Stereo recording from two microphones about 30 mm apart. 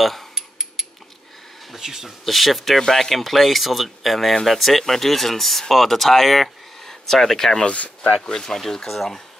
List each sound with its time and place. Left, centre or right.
0.0 s mechanisms: centre
0.3 s mechanisms: centre
1.8 s speech: centre
2.2 s speech: centre
2.8 s speech: centre
3.2 s speech: centre
7.6 s speech: left
8.3 s speech: centre